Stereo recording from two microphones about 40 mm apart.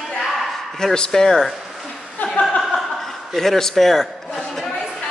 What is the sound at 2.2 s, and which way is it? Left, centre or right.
Chuckle, left.